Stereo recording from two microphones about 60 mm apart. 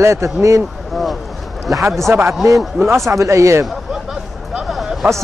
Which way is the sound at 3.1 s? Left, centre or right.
Right.